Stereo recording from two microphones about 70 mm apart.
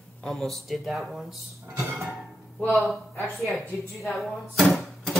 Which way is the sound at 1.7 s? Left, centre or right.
Right.